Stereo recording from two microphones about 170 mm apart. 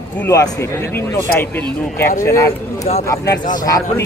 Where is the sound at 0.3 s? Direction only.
20° left (ahead or behind).